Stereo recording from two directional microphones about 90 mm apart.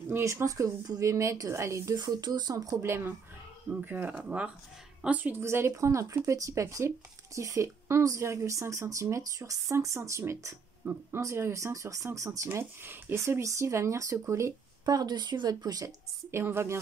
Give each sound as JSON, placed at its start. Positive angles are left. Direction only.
{"t": 0.1, "sound": "speech", "side_deg": -35}
{"t": 2.0, "sound": "a woman's voice", "side_deg": -45}
{"t": 5.4, "sound": "speech", "side_deg": -30}
{"t": 16.3, "sound": "speech", "side_deg": -25}